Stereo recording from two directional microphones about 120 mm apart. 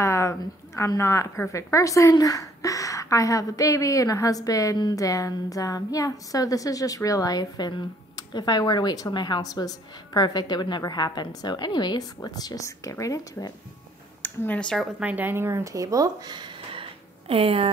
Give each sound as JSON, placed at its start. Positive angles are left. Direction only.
{"t": 0.0, "sound": "speech", "side_deg": 25}
{"t": 14.2, "sound": "speech", "side_deg": 15}
{"t": 14.9, "sound": "speech", "side_deg": -10}
{"t": 17.3, "sound": "speech", "side_deg": -50}